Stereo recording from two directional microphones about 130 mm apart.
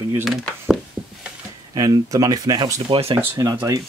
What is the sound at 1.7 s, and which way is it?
Speech, 30° right (ahead or behind).